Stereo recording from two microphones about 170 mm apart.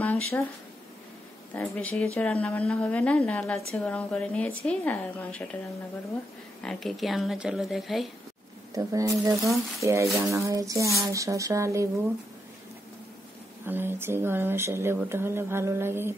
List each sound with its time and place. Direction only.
0.0 s a sound: 15° left (ahead or behind)
1.5 s speech: 10° left (ahead or behind)
6.6 s speech: 5° left (ahead or behind)
8.7 s speech: 20° right (ahead or behind)
13.7 s speech: 10° right (ahead or behind)